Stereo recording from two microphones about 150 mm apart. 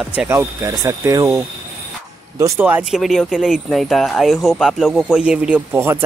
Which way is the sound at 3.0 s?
Centre (ahead or behind).